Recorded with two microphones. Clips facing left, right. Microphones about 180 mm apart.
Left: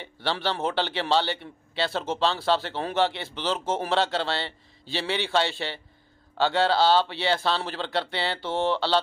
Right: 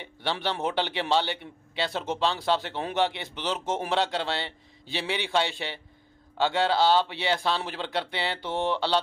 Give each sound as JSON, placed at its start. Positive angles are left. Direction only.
{"t": 0.0, "sound": "a man's voice", "side_deg": -15}